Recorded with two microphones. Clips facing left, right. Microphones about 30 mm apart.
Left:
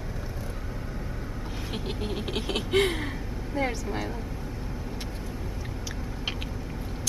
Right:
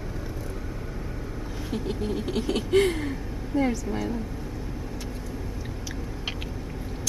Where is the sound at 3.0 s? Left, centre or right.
Centre.